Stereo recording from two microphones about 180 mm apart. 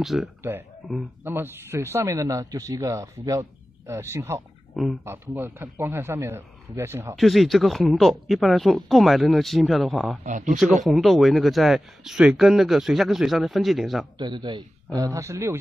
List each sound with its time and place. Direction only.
0.0 s speech: centre (ahead or behind)
0.4 s speech: 15° right (ahead or behind)
7.2 s speech: centre (ahead or behind)
10.2 s speech: 45° right (ahead or behind)
10.9 s speech: centre (ahead or behind)
14.1 s a man's voice: 25° right (ahead or behind)